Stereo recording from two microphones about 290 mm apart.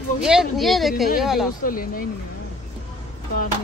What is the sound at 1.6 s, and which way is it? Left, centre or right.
Speech, left.